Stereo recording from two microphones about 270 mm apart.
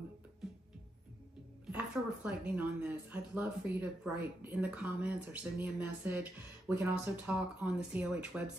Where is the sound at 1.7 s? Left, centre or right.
Centre.